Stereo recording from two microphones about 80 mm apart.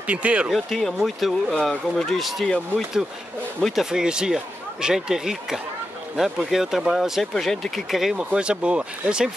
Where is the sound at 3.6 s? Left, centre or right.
Centre.